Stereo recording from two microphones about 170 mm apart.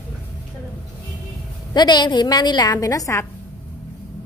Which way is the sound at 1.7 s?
25° left (ahead or behind).